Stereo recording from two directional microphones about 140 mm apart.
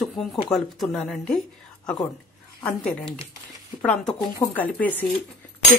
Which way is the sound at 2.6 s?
10° left (ahead or behind).